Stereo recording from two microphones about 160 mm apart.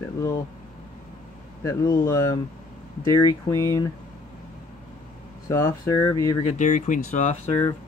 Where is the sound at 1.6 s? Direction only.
20° left (ahead or behind).